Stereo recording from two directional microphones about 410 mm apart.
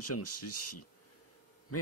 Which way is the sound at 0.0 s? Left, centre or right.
Left.